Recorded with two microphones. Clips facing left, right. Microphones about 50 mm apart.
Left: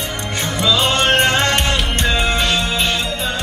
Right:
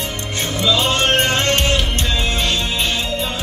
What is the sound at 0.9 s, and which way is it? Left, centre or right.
Music, left.